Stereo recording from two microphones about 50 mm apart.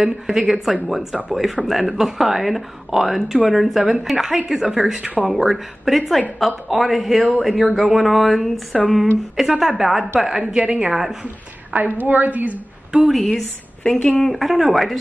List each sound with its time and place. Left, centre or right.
0.0 s speech: centre
5.0 s a woman's voice: right
5.3 s speech: centre
9.4 s speech: centre
10.4 s a woman's voice: right
11.7 s a woman's voice: right
13.1 s a woman's voice: centre